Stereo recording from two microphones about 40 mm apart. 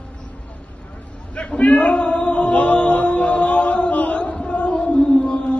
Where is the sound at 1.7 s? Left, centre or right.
Left.